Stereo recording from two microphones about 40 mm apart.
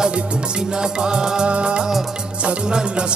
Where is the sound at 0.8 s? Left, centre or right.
Centre.